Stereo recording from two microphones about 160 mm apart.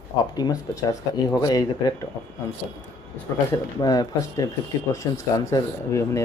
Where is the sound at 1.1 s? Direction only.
25° left (ahead or behind).